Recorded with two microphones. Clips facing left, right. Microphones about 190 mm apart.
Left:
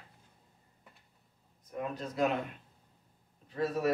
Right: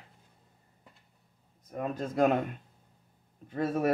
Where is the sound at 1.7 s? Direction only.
45° right (ahead or behind).